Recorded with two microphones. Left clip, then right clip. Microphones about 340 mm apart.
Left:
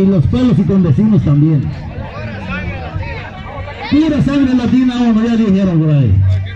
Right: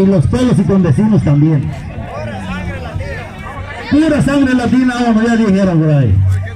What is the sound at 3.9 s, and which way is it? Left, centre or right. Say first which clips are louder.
A man's voice: right 2 dB; right.